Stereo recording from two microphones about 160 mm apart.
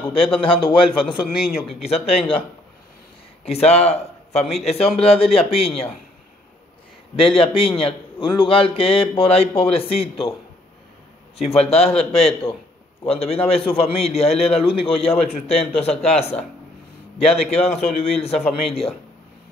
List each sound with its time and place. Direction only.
0.4 s a man's voice: 30° left (ahead or behind)
1.8 s a man's voice: 40° left (ahead or behind)
3.4 s a man's voice: 40° left (ahead or behind)
7.2 s a man's voice: 35° left (ahead or behind)
11.3 s a man's voice: 40° left (ahead or behind)